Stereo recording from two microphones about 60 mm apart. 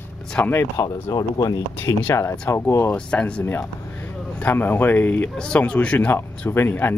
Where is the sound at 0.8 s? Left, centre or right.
Left.